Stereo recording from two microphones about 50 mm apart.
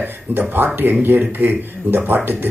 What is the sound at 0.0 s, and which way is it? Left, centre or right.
Speech, right.